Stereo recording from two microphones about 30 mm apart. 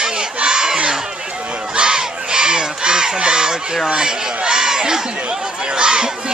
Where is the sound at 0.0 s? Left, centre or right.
Right.